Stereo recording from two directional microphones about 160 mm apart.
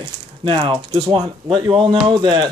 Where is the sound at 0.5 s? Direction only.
30° right (ahead or behind).